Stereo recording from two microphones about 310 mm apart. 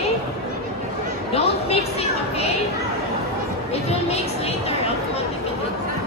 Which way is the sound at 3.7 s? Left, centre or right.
Centre.